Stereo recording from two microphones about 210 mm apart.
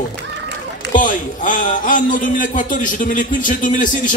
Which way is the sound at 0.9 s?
40° left (ahead or behind).